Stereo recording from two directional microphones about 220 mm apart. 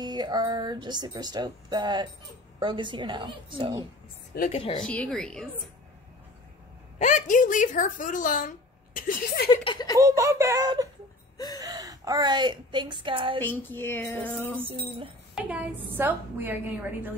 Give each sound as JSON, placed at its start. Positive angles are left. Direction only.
{"t": 0.0, "sound": "speech", "side_deg": -20}
{"t": 4.5, "sound": "a woman's voice", "side_deg": 25}
{"t": 4.8, "sound": "speech", "side_deg": 5}
{"t": 7.0, "sound": "a woman's voice", "side_deg": 35}
{"t": 9.5, "sound": "a sound", "side_deg": 20}
{"t": 9.9, "sound": "a woman's voice", "side_deg": -15}
{"t": 11.3, "sound": "a sound", "side_deg": 15}
{"t": 11.6, "sound": "a woman's voice", "side_deg": -15}
{"t": 13.4, "sound": "speech", "side_deg": 10}
{"t": 14.6, "sound": "speech", "side_deg": -25}
{"t": 15.3, "sound": "a woman's voice", "side_deg": -5}